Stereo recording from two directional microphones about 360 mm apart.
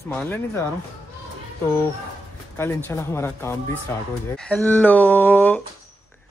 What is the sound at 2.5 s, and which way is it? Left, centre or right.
Speech, centre.